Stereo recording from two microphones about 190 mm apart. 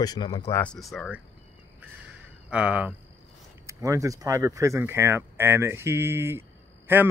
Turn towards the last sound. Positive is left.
turn(degrees=-10)  # may be behind; listen again after turning